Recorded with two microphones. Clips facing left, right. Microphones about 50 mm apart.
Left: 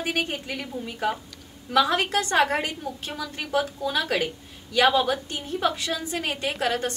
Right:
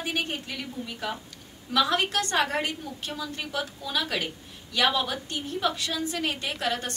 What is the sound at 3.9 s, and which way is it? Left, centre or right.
A woman's voice, centre.